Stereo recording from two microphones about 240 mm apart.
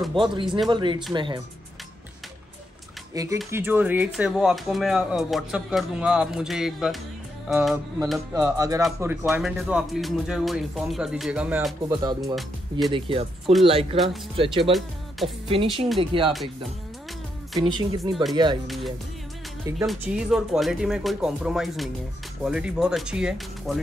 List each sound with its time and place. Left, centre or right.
0.2 s speech: centre
3.4 s speech: centre
11.9 s speech: centre
12.4 s speech: centre
13.5 s speech: right
14.6 s speech: centre
15.4 s speech: right
17.6 s speech: centre
18.7 s speech: centre